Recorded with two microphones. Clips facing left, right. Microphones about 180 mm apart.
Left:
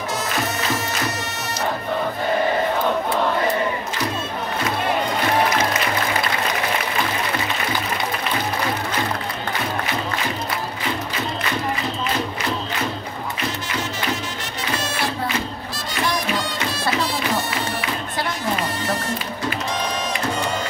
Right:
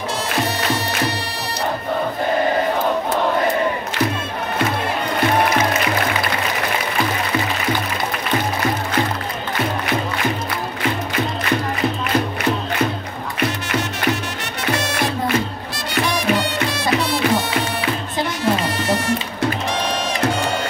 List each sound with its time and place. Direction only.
13.4 s music: 65° right (ahead or behind)
18.8 s music: 90° right